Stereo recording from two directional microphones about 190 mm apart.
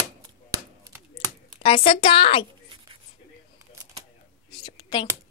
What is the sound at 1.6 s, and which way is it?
Speech, 30° left (ahead or behind).